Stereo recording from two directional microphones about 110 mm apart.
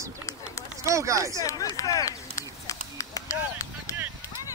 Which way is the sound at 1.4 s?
35° left (ahead or behind).